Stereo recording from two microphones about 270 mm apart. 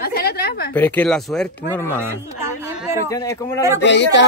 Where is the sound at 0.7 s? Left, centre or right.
Centre.